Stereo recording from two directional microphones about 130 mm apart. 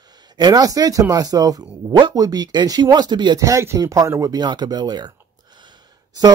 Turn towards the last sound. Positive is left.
turn(degrees=-35)  # may be behind; listen again after turning